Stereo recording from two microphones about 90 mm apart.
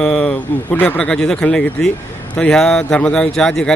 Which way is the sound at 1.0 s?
5° left (ahead or behind).